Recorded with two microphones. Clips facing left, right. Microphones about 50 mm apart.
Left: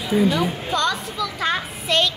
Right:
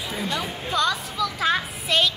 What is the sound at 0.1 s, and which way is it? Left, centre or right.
A child's voice, centre.